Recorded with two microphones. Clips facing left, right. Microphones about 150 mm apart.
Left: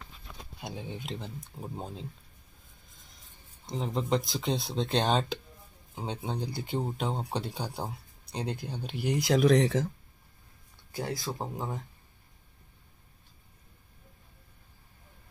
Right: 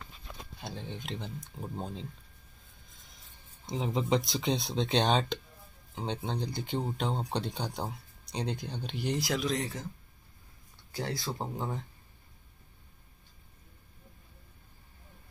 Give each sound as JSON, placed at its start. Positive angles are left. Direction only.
{"t": 0.6, "sound": "speech", "side_deg": 10}
{"t": 3.6, "sound": "speech", "side_deg": -5}
{"t": 9.4, "sound": "speech", "side_deg": 75}
{"t": 10.9, "sound": "speech", "side_deg": 20}
{"t": 11.3, "sound": "speech", "side_deg": 0}